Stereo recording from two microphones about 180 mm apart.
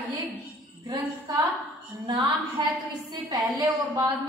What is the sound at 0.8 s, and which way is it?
A woman's voice, 20° right (ahead or behind).